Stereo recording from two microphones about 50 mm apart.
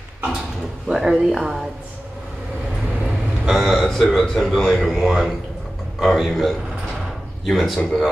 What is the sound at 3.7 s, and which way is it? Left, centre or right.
A man's voice, centre.